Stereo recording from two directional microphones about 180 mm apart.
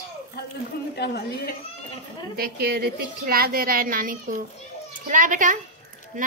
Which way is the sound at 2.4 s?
55° right (ahead or behind).